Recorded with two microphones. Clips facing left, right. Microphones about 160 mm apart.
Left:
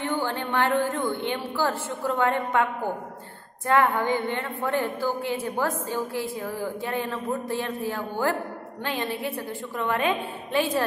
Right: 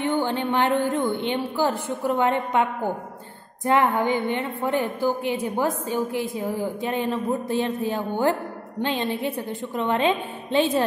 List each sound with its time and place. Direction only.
0.0 s a woman's voice: 20° right (ahead or behind)